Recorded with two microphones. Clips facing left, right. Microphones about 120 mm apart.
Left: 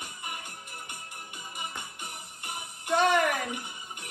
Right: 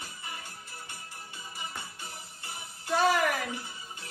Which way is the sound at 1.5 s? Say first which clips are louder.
Left 2 dB; 20° left (ahead or behind).